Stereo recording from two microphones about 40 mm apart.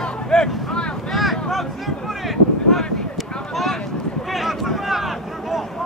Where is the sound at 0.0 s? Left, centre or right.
Centre.